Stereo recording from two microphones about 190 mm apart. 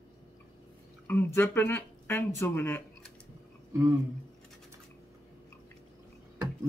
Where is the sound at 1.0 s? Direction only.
10° left (ahead or behind).